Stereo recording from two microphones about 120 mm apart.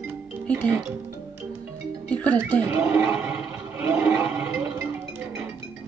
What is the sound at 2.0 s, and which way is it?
Speech, 10° left (ahead or behind).